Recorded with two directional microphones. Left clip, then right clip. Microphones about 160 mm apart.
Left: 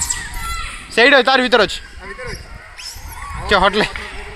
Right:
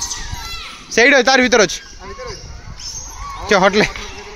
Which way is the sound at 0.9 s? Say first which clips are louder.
Even; 45° right (ahead or behind).